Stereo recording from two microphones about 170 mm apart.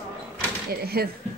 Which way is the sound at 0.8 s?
65° right (ahead or behind).